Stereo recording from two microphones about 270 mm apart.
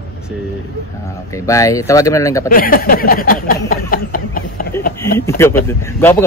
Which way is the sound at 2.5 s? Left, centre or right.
Left.